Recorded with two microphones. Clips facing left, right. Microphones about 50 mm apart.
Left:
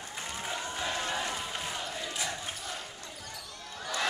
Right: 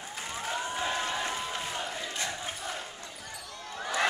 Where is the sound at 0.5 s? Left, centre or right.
Centre.